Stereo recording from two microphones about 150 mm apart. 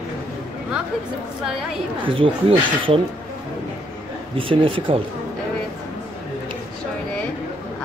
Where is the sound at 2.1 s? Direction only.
35° right (ahead or behind).